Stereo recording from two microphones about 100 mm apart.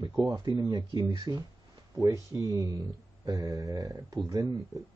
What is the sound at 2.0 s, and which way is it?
Speech, 35° right (ahead or behind).